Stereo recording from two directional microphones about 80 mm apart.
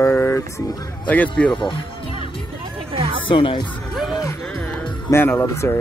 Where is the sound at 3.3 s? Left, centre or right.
Left.